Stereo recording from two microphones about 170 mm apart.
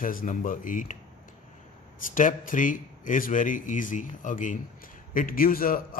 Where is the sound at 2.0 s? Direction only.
50° left (ahead or behind).